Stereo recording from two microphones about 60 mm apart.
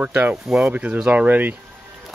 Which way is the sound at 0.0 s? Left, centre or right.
Right.